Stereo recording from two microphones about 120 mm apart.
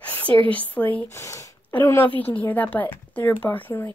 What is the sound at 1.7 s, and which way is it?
Speech, 15° left (ahead or behind).